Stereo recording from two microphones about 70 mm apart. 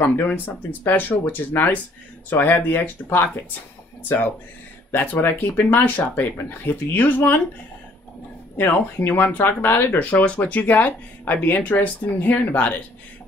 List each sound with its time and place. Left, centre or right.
0.3 s speech: left
4.9 s speech: left
8.5 s speech: left